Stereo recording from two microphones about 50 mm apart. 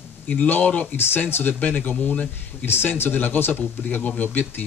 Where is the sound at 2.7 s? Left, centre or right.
Left.